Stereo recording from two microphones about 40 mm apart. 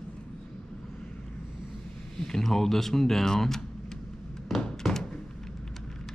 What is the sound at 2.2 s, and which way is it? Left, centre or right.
Speech, centre.